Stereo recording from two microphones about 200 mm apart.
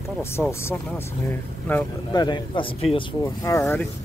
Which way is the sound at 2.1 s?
20° left (ahead or behind).